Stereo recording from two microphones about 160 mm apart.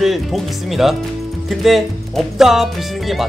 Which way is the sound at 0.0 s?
Centre (ahead or behind).